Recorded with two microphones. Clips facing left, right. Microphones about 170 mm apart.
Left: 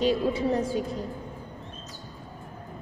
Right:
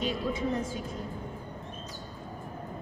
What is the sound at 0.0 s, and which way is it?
Speech, 35° left (ahead or behind).